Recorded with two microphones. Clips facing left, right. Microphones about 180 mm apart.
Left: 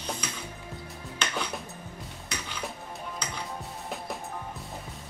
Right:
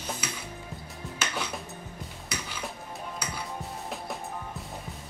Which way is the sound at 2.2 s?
10° right (ahead or behind).